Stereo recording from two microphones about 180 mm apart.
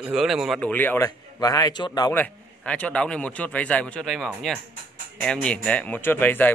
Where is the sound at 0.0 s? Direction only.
Centre (ahead or behind); by 2.2 s 20° left (ahead or behind).